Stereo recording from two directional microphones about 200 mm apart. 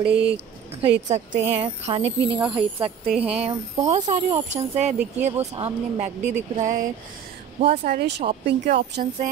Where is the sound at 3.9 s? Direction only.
30° right (ahead or behind).